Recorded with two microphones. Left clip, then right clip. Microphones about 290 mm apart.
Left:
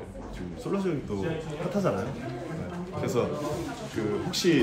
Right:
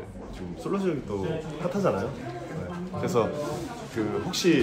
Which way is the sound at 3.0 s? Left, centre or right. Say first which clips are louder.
Right 3 dB; centre.